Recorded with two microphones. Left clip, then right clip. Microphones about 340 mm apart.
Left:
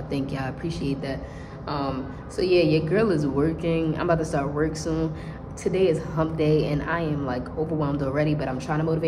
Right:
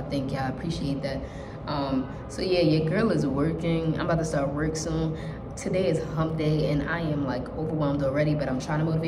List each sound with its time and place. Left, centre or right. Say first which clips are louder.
0.1 s a woman's voice: even; centre
2.3 s a woman's voice: left 3 dB; centre